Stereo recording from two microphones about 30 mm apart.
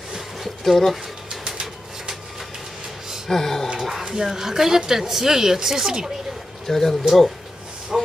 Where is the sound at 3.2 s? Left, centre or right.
Centre.